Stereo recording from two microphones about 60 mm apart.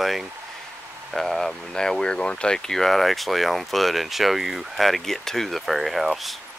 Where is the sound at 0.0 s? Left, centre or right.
Centre.